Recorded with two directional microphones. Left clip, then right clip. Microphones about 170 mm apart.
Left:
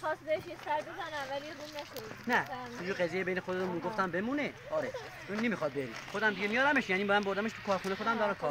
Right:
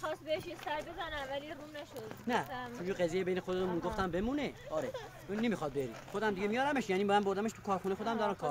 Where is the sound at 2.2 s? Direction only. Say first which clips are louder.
Left 4 dB; 55° right (ahead or behind).